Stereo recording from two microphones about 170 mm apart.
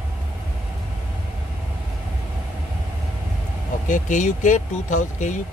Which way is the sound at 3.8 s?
50° left (ahead or behind).